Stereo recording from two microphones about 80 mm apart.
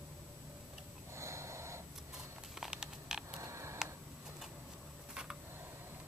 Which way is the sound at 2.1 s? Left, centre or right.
Centre.